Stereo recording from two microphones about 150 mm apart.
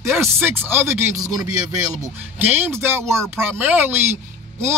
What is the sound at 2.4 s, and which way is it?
A man's voice, 10° right (ahead or behind).